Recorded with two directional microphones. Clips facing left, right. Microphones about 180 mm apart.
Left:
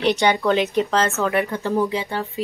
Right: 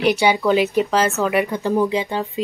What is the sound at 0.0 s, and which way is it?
Speech, 5° right (ahead or behind).